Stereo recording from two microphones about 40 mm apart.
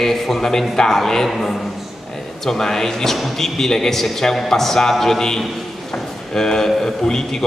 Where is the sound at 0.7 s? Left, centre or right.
Centre.